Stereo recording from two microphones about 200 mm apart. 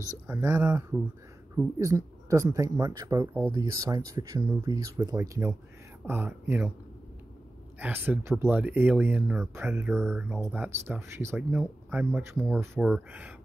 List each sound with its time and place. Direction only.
0.1 s speech: 10° right (ahead or behind)
7.8 s speech: 10° right (ahead or behind)